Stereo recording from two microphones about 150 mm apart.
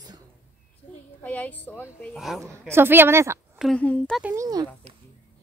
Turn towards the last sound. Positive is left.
turn(degrees=-25)  # may be behind; listen again after turning